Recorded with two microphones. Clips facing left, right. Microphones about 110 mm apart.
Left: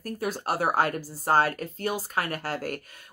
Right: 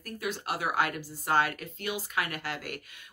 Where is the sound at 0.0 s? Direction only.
40° left (ahead or behind).